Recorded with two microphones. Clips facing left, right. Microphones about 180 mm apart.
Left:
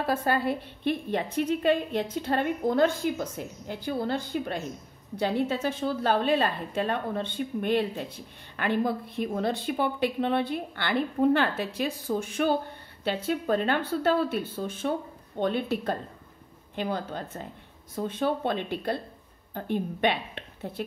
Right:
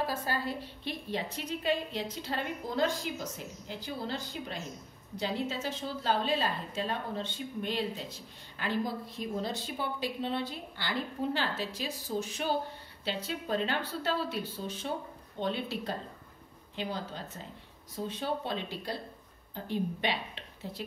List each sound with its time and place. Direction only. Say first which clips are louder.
0.0 s a woman's voice: left 7 dB; 60° left (ahead or behind)